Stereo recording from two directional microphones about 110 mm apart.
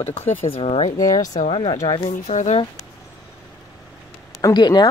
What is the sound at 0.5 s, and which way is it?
Speech, 60° left (ahead or behind).